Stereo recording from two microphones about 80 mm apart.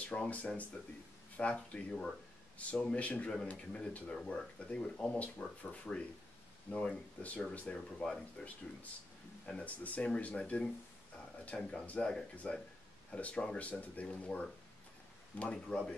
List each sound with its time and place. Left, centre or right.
0.0 s speech: centre
9.5 s speech: centre